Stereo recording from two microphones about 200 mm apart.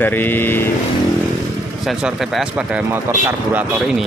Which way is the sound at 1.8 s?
Centre (ahead or behind).